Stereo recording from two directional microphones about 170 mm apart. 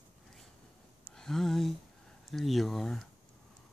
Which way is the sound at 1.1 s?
5° left (ahead or behind).